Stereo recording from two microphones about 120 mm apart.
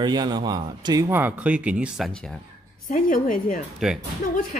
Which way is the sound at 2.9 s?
90° left.